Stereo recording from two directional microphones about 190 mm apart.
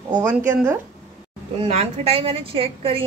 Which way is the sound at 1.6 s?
35° right (ahead or behind).